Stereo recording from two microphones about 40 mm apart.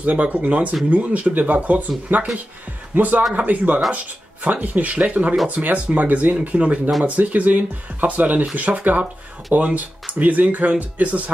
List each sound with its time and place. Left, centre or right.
0.0 s speech: right